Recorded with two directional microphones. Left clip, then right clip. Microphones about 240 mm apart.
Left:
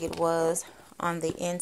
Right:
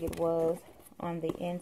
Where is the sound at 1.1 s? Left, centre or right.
Left.